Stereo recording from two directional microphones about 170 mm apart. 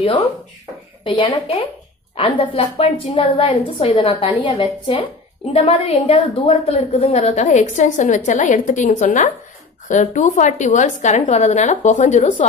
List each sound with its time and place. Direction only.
1.0 s a woman's voice: 30° left (ahead or behind)